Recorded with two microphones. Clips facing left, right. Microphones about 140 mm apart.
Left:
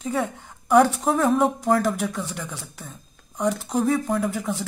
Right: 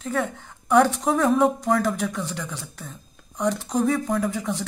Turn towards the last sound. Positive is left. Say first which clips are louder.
# even
turn(degrees=5)  # may be behind; listen again after turning